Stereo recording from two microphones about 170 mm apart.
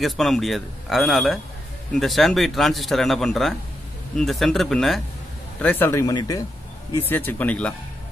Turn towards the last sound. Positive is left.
turn(degrees=5)  # may be behind; listen again after turning